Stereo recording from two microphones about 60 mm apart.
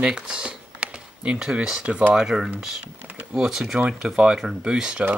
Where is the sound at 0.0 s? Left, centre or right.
Centre.